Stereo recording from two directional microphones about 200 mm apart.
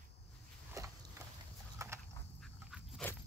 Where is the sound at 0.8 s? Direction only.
15° right (ahead or behind).